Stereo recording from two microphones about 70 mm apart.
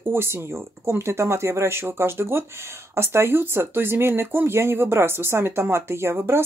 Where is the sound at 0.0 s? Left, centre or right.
Right.